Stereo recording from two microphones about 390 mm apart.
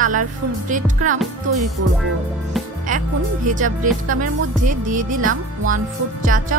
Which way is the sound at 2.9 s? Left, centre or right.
Centre.